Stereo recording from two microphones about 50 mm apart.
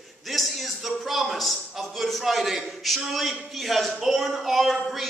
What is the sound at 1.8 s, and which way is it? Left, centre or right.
A woman's voice, centre.